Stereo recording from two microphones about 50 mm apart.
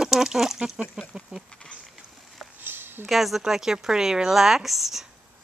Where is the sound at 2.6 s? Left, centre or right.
Right.